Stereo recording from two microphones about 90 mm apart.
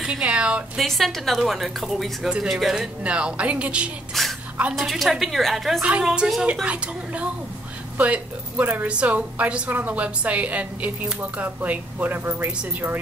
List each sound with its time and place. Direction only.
0.0 s a woman's voice: 10° right (ahead or behind)
0.7 s a woman's voice: centre (ahead or behind)
4.1 s a sound: centre (ahead or behind)
4.7 s a woman's voice: centre (ahead or behind)
5.8 s a woman's voice: 10° right (ahead or behind)